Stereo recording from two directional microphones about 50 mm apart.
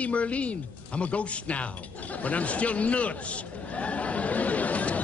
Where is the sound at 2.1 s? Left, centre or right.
Left.